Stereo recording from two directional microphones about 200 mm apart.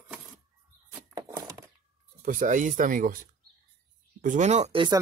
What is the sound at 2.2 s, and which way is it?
Speech, 40° right (ahead or behind).